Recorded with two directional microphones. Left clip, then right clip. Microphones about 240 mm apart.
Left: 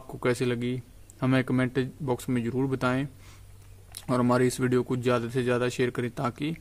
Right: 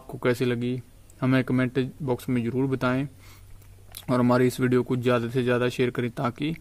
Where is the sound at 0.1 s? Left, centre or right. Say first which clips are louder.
Right 2 dB; centre.